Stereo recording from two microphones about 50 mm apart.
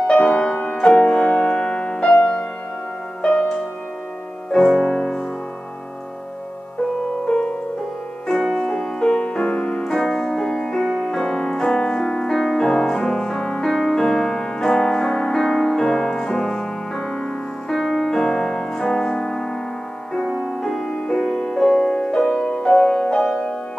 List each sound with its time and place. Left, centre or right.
0.0 s music: centre
4.7 s music: centre
8.3 s music: centre
12.3 s music: centre
21.9 s music: centre